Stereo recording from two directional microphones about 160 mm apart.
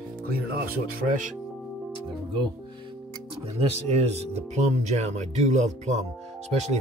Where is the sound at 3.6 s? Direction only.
40° right (ahead or behind).